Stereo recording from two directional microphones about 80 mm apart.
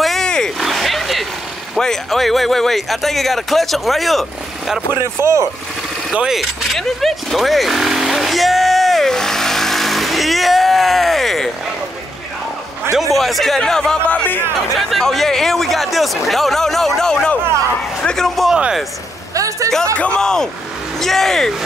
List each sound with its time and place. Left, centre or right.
0.0 s oink: centre
1.8 s speech: centre
5.2 s speech: right
6.1 s vehicle: centre
13.1 s speech: centre
14.8 s speech: centre
19.3 s a sound: right
20.0 s speech: centre